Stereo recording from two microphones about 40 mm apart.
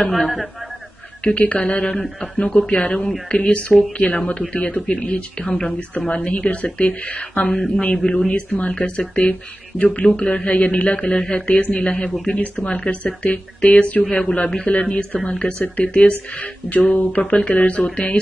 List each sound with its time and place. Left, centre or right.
0.0 s a man's voice: centre
1.2 s speech: left
1.8 s a man's voice: left
2.3 s speech: left
2.7 s a man's voice: left
8.3 s speech: left
8.5 s speech: left
10.0 s a man's voice: left
14.5 s a man's voice: left
14.8 s a man's voice: left
16.1 s speech: left
17.2 s a man's voice: left